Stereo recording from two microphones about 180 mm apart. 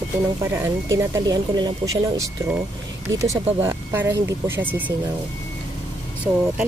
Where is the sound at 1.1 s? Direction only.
20° right (ahead or behind).